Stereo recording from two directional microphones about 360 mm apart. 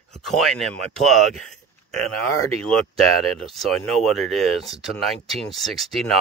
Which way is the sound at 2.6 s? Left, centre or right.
Centre.